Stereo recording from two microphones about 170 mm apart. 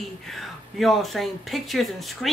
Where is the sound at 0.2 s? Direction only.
Centre (ahead or behind).